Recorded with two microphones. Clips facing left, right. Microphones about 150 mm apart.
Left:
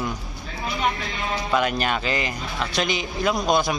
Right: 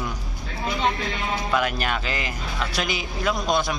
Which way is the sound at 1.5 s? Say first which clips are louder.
Left 3 dB; centre (ahead or behind).